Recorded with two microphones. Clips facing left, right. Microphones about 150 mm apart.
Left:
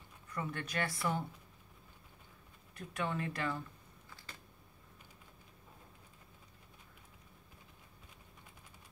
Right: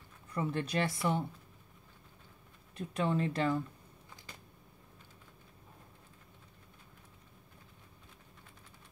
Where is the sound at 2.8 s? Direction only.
25° right (ahead or behind).